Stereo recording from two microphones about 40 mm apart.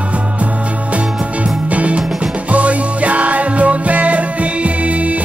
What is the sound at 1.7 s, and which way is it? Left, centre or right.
Music, right.